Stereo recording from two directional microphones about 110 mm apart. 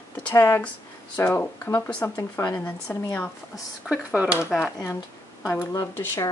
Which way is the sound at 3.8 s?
10° right (ahead or behind).